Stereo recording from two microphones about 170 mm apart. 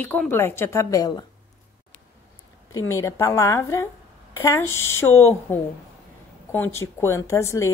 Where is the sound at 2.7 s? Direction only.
20° left (ahead or behind).